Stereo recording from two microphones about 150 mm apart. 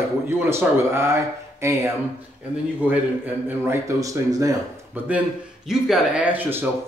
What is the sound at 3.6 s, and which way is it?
Speech, 20° right (ahead or behind).